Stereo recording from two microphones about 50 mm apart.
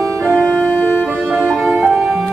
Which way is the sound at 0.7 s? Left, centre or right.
Left.